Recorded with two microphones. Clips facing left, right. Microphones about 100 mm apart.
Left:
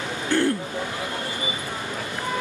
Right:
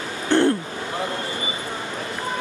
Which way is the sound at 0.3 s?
25° right (ahead or behind).